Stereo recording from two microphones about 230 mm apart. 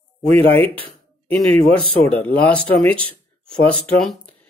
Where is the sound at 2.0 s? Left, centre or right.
Centre.